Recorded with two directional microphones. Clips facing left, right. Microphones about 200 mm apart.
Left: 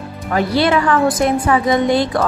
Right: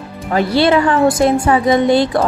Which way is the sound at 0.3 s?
30° right (ahead or behind).